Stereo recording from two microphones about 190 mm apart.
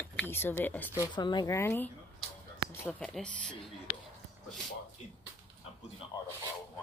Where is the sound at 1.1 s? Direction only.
25° left (ahead or behind); by 3.6 s 5° left (ahead or behind).